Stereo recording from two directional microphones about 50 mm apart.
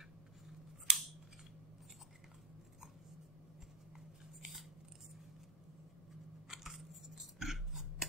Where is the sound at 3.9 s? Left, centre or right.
Centre.